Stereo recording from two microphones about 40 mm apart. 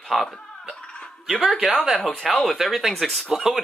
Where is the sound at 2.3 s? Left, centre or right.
Centre.